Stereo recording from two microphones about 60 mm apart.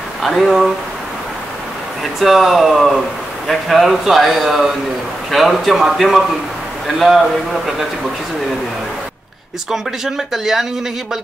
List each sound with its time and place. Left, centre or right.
0.2 s a man's voice: centre
2.1 s a man's voice: centre
9.7 s a man's voice: centre